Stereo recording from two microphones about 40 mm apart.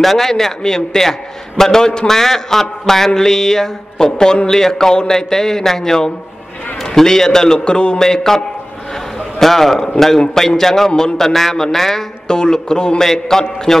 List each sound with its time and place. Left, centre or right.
0.0 s a man's voice: centre
9.4 s a man's voice: centre
13.0 s a man's voice: centre